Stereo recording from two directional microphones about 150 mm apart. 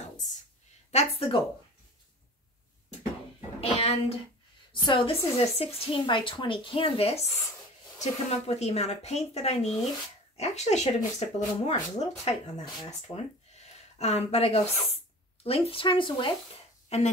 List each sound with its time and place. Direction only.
0.9 s a woman's voice: 40° left (ahead or behind)
3.8 s a woman's voice: 40° left (ahead or behind)
16.9 s speech: 45° left (ahead or behind)